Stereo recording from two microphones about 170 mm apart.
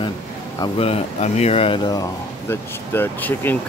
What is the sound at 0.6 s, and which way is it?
Speech, 35° left (ahead or behind).